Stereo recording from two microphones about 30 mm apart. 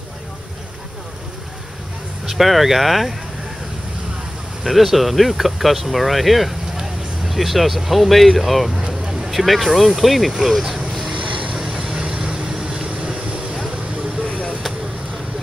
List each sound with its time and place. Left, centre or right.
2.2 s speech: centre
4.6 s speech: centre
8.7 s vehicle: right
9.3 s speech: centre
10.9 s boat: centre
11.2 s vehicle: right
11.5 s vehicle: centre
11.9 s vehicle: right